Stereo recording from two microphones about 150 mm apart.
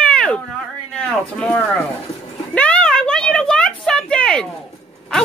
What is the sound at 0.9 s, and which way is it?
Speech, 5° left (ahead or behind).